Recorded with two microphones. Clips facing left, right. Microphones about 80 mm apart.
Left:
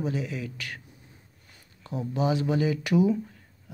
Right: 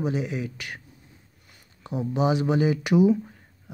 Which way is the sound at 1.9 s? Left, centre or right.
Centre.